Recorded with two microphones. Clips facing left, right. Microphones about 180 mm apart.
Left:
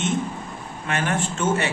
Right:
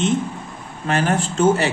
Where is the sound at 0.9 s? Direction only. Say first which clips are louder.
Right 5 dB; 35° right (ahead or behind).